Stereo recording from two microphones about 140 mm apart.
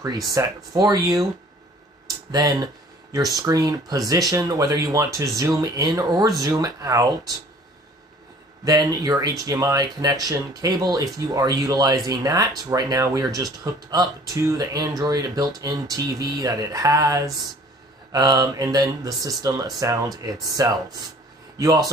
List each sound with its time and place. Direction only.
0.4 s speech: 25° right (ahead or behind)
2.3 s speech: 25° right (ahead or behind)
8.6 s speech: 25° right (ahead or behind)